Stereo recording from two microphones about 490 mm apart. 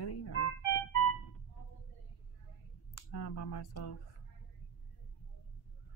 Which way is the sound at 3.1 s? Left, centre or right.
Left.